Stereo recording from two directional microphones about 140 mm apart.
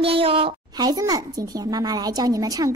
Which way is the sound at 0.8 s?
30° right (ahead or behind).